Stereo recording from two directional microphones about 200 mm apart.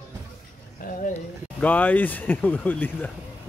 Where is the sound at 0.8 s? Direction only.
40° left (ahead or behind).